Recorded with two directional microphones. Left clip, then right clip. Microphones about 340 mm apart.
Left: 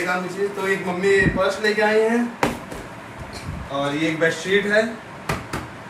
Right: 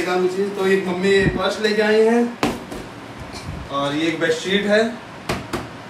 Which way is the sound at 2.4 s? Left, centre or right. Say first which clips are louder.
Even; centre.